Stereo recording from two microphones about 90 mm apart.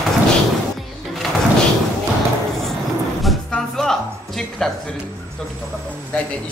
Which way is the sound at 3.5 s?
5° left (ahead or behind).